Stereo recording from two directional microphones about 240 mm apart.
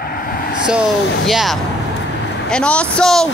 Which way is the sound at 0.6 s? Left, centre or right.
Centre.